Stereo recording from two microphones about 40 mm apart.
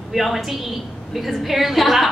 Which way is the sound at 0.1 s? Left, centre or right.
Centre.